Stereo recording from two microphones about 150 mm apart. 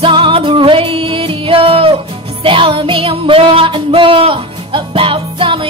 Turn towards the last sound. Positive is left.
turn(degrees=-35)  # may be behind; listen again after turning